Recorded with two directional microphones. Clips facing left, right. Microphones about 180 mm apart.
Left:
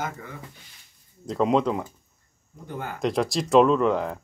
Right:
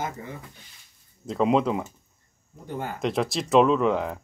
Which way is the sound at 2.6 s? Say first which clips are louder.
Right 2 dB; 20° right (ahead or behind).